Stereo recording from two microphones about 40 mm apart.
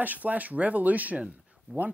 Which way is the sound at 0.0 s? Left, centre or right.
Right.